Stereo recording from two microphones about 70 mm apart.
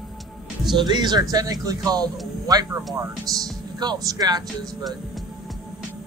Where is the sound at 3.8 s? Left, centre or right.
Right.